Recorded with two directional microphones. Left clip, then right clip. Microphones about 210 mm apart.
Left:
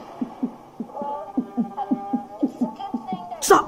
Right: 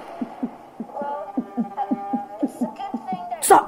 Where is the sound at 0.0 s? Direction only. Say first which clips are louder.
Even; 15° right (ahead or behind).